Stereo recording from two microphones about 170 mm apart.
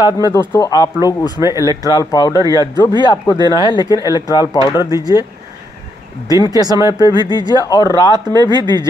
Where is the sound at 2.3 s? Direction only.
20° right (ahead or behind).